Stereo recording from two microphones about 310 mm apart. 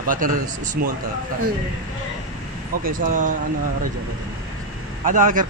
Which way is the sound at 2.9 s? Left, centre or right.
Right.